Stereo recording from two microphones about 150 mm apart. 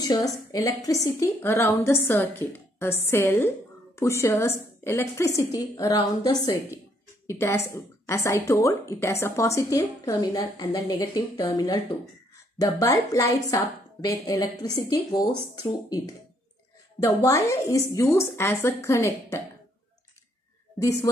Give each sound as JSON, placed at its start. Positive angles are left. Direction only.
{"t": 0.0, "sound": "a woman's voice", "side_deg": 25}
{"t": 17.0, "sound": "speech", "side_deg": 20}
{"t": 20.8, "sound": "speech", "side_deg": 20}